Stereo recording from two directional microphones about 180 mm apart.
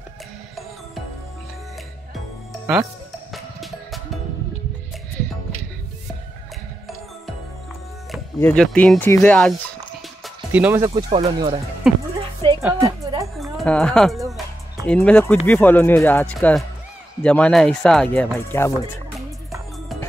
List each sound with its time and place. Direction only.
2.6 s speech: 10° right (ahead or behind)
3.3 s music: centre (ahead or behind)
8.4 s speech: 10° left (ahead or behind)
10.2 s music: 10° right (ahead or behind)
10.9 s speech: 30° right (ahead or behind)
11.9 s speech: centre (ahead or behind)
12.5 s music: 15° right (ahead or behind)
13.4 s speech: centre (ahead or behind)